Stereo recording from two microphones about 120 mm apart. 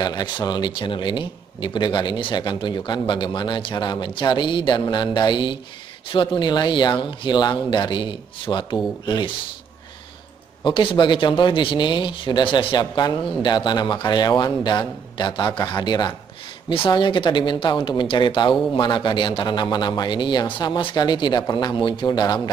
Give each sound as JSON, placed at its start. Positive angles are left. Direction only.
{"t": 0.0, "sound": "speech", "side_deg": 35}
{"t": 10.6, "sound": "speech", "side_deg": 45}